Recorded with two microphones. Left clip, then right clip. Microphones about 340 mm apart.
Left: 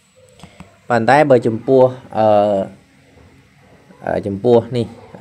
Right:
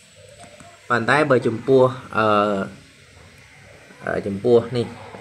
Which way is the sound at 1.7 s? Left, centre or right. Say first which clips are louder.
Left 4 dB; centre.